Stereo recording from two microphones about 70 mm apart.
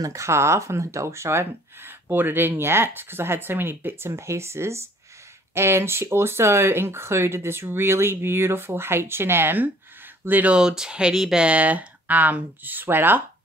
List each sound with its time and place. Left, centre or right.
0.0 s speech: right
10.5 s speech: centre; by 13.2 s right